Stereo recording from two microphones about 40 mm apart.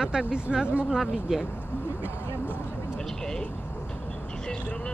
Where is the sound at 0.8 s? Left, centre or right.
Centre.